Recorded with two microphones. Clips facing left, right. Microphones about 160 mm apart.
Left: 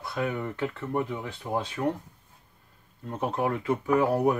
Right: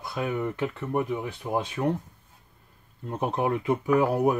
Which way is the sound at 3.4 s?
20° right (ahead or behind).